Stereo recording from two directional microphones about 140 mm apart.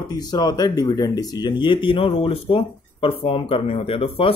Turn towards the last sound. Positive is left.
turn(degrees=40)  # may be behind; listen again after turning